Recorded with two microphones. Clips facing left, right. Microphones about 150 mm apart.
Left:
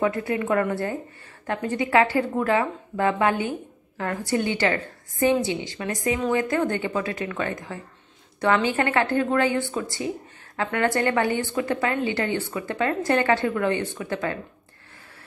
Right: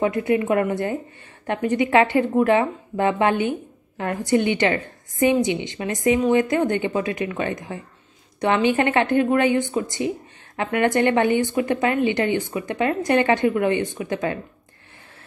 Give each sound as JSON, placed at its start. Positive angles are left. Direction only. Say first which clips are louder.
{"t": 0.0, "sound": "speech", "louder": "right 4 dB", "side_deg": -20}